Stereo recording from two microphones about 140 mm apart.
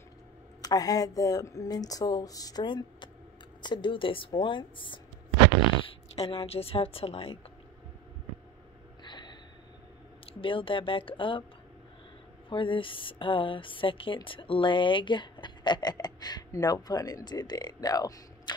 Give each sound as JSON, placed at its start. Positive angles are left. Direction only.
{"t": 0.6, "sound": "a woman's voice", "side_deg": 25}
{"t": 9.0, "sound": "gasp", "side_deg": 30}
{"t": 10.2, "sound": "a woman's voice", "side_deg": 40}
{"t": 12.4, "sound": "a woman's voice", "side_deg": 35}